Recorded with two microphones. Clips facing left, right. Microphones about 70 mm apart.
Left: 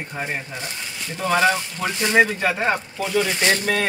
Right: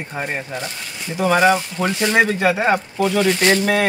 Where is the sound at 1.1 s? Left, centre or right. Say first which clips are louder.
Right 4 dB; centre.